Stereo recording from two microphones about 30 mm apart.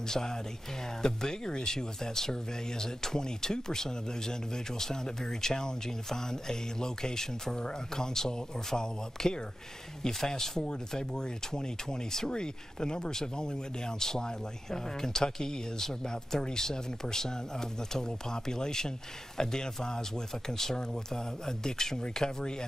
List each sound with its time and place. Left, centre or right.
0.1 s speech: left